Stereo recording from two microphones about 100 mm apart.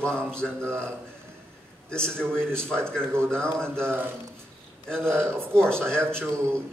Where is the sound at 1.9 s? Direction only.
10° left (ahead or behind).